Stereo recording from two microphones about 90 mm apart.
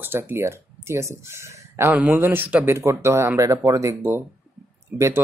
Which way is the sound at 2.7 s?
30° right (ahead or behind).